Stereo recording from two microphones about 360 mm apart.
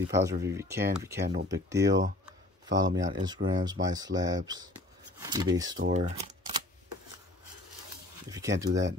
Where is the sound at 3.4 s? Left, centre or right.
Right.